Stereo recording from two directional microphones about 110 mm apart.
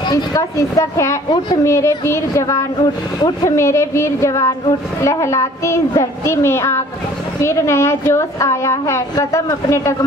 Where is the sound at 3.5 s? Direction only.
25° left (ahead or behind).